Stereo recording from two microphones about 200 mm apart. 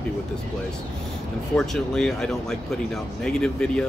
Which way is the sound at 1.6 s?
Centre (ahead or behind).